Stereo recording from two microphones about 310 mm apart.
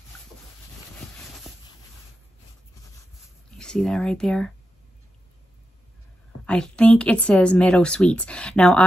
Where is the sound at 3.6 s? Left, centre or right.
Centre.